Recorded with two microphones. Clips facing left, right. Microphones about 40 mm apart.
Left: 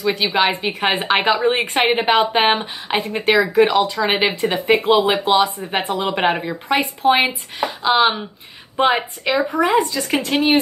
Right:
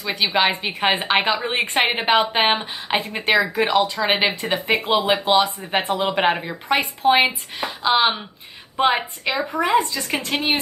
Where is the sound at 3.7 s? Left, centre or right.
Right.